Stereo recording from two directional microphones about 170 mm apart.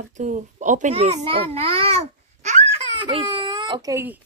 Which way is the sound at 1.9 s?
40° right (ahead or behind).